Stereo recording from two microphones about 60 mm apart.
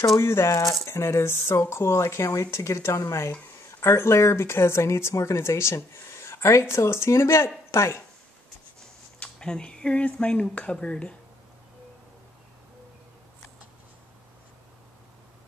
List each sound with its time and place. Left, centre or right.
0.2 s speech: left
9.2 s speech: centre